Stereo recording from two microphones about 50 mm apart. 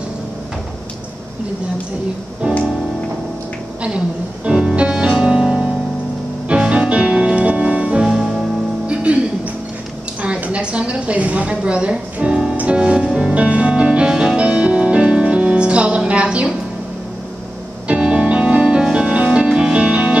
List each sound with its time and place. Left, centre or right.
4.5 s music: centre
8.1 s music: centre
9.1 s music: right
10.4 s a woman's voice: right
12.5 s music: right
13.3 s music: right
16.1 s a sound: right
17.8 s music: right